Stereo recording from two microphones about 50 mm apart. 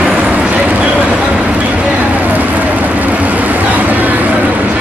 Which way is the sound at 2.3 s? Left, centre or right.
Right.